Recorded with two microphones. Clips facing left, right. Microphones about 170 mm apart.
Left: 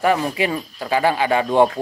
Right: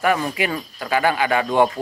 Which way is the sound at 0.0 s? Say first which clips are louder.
Left 2 dB; 30° left (ahead or behind).